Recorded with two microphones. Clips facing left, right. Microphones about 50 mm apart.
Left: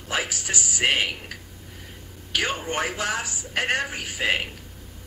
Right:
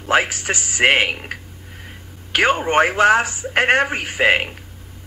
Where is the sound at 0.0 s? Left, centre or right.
Right.